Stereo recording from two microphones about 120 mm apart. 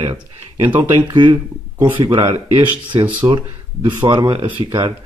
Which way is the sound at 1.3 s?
15° right (ahead or behind).